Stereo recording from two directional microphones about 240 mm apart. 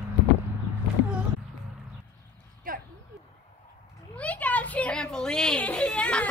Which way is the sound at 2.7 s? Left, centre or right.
Right.